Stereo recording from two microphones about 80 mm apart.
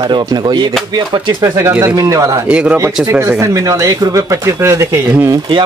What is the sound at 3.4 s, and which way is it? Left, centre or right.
Speech, right.